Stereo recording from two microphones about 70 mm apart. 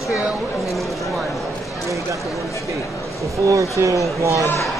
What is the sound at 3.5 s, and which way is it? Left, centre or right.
Speech, right.